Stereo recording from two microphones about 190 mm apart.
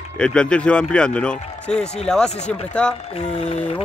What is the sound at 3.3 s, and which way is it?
Speech, 35° left (ahead or behind).